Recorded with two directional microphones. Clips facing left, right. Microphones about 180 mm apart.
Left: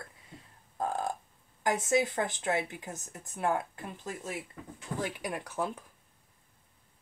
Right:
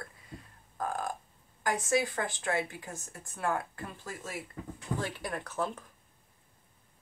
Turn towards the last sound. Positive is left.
turn(degrees=10)  # may be behind; listen again after turning